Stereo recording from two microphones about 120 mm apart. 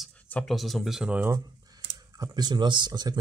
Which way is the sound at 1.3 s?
35° right (ahead or behind).